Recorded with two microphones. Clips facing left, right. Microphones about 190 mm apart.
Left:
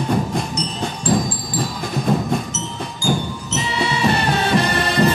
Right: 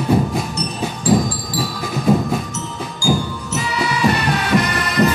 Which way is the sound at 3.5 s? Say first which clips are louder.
Even; 25° left (ahead or behind).